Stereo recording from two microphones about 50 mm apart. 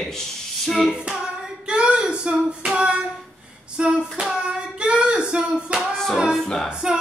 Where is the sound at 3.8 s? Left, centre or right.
Centre.